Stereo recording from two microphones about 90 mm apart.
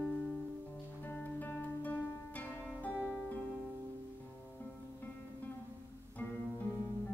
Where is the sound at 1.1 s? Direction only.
20° left (ahead or behind).